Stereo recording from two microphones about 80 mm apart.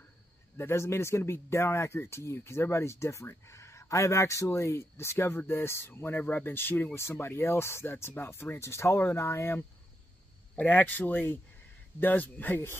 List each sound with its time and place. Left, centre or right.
0.6 s speech: left
10.5 s speech: left